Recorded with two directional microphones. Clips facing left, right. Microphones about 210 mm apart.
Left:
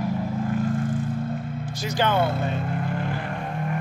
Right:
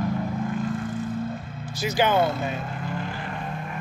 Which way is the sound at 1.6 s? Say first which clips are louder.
Right 3 dB; 5° right (ahead or behind).